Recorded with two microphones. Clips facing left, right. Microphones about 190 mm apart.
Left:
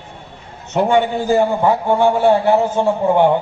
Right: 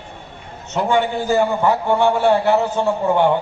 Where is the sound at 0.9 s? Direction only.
25° left (ahead or behind).